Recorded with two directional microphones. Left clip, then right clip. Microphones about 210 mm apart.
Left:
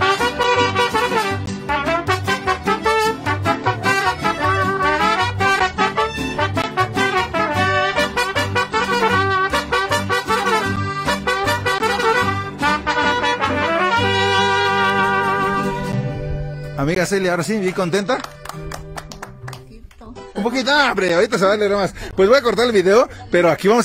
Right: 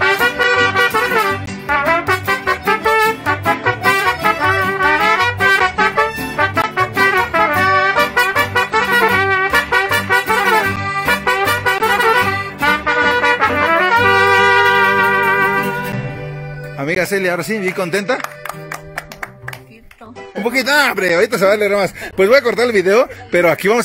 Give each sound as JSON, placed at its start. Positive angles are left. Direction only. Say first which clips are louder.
{"t": 0.2, "sound": "music", "louder": "right 3 dB", "side_deg": -30}
{"t": 8.1, "sound": "music", "louder": "right 5 dB", "side_deg": -45}
{"t": 13.5, "sound": "trumpet", "louder": "right 4 dB", "side_deg": -35}
{"t": 14.3, "sound": "music", "louder": "right 6 dB", "side_deg": -40}
{"t": 15.0, "sound": "music", "louder": "right 4 dB", "side_deg": -35}
{"t": 16.7, "sound": "speech", "louder": "right 2 dB", "side_deg": 10}
{"t": 20.4, "sound": "speech", "louder": "right 3 dB", "side_deg": -5}